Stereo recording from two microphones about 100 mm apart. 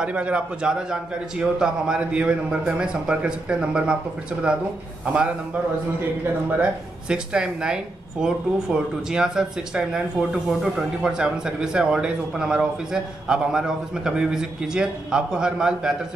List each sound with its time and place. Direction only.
0.0 s speech: 10° right (ahead or behind)
6.6 s speech: 10° right (ahead or behind)